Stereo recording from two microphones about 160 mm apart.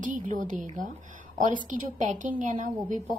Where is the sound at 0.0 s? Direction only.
55° right (ahead or behind).